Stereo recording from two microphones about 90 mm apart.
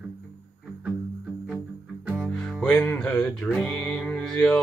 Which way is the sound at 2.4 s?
10° left (ahead or behind).